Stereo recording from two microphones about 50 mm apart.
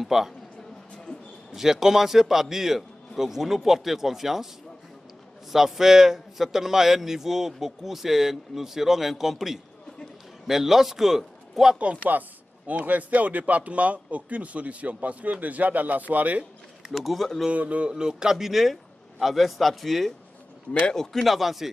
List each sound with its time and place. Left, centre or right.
0.0 s a man's voice: centre
1.5 s a man's voice: centre
5.5 s a man's voice: centre
12.1 s a man's voice: right
16.9 s a man's voice: centre
17.5 s a man's voice: right; by 20.1 s centre
20.8 s a man's voice: centre